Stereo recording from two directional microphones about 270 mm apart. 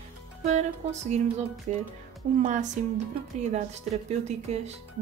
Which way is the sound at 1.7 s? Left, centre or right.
Right.